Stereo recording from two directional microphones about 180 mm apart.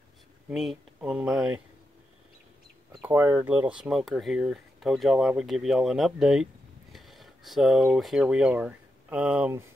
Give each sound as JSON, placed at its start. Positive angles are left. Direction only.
{"t": 0.5, "sound": "speech", "side_deg": -5}
{"t": 2.9, "sound": "speech", "side_deg": -10}